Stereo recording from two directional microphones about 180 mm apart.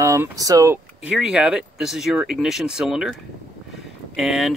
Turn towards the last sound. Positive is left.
turn(degrees=0)  # may be behind; listen again after turning